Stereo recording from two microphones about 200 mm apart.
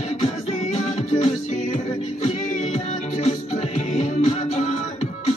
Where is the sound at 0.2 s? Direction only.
35° left (ahead or behind).